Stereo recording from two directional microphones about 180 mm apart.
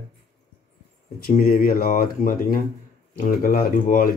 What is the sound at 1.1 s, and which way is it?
Speech, 55° left (ahead or behind).